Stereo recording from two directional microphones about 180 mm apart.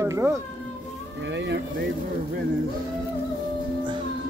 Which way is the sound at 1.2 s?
80° right.